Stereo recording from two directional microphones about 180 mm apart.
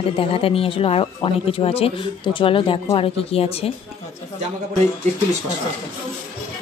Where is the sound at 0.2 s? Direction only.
30° left (ahead or behind).